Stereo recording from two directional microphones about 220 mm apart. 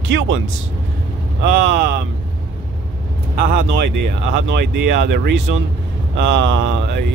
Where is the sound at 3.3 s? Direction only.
45° right (ahead or behind).